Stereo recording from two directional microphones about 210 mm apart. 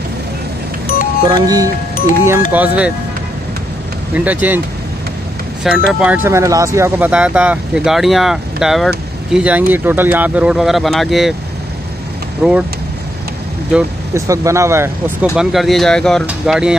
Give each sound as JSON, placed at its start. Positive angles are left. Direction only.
{"t": 1.2, "sound": "speech", "side_deg": -15}
{"t": 2.5, "sound": "speech", "side_deg": -5}
{"t": 4.1, "sound": "speech", "side_deg": -10}
{"t": 5.6, "sound": "speech", "side_deg": -5}
{"t": 12.4, "sound": "speech", "side_deg": 0}
{"t": 13.7, "sound": "speech", "side_deg": -15}
{"t": 15.3, "sound": "speech", "side_deg": 0}